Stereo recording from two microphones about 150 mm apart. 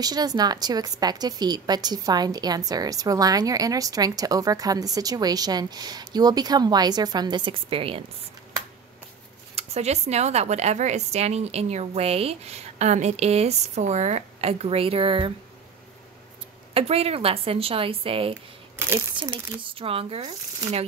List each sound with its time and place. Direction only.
0.0 s a woman's voice: 25° right (ahead or behind)
9.6 s speech: 45° right (ahead or behind)
16.7 s speech: 40° right (ahead or behind)
18.8 s speech: 15° right (ahead or behind)
19.6 s speech: 35° right (ahead or behind)